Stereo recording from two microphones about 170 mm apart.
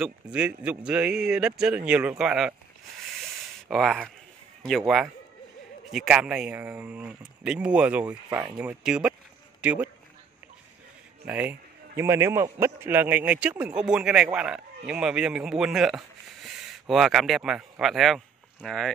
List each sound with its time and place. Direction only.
0.0 s a man's voice: 5° right (ahead or behind)
3.2 s a sound: centre (ahead or behind)
4.6 s a man's voice: centre (ahead or behind)
11.2 s a man's voice: 10° right (ahead or behind)